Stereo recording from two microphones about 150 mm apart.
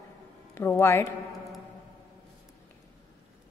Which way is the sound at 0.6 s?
15° left (ahead or behind).